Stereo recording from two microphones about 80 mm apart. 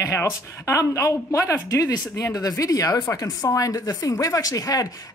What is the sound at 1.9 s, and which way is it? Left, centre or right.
Speech, left.